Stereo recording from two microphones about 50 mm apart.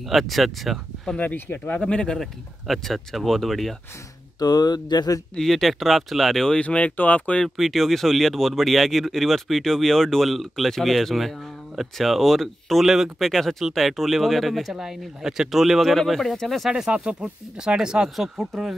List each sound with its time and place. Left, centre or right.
0.1 s speech: centre
1.2 s speech: left
1.8 s speech: centre
2.7 s speech: centre
5.3 s speech: centre
6.5 s speech: left
7.4 s speech: centre
16.9 s speech: right; by 18.8 s centre